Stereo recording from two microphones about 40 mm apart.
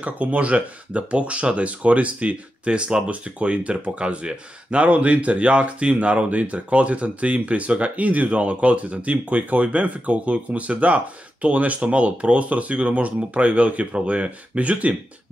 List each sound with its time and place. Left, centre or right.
0.0 s speech: right